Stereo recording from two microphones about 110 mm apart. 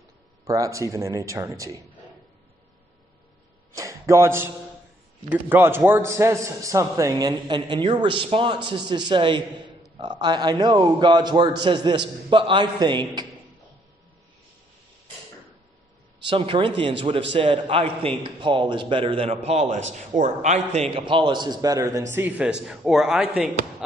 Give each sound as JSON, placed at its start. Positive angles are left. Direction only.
{"t": 0.5, "sound": "a man's voice", "side_deg": -30}
{"t": 3.7, "sound": "a man's voice", "side_deg": -30}
{"t": 16.3, "sound": "a man's voice", "side_deg": -50}
{"t": 20.9, "sound": "a man's voice", "side_deg": -50}
{"t": 22.1, "sound": "speech", "side_deg": -15}